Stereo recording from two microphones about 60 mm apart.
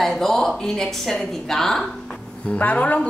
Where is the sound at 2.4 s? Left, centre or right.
Left.